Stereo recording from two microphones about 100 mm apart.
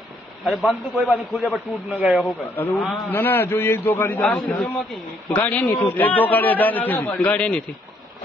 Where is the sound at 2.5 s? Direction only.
15° left (ahead or behind).